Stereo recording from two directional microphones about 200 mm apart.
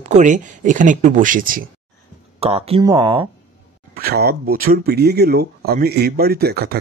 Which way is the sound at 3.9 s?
50° right (ahead or behind).